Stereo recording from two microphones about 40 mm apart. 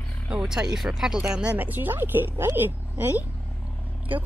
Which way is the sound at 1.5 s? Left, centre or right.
Right.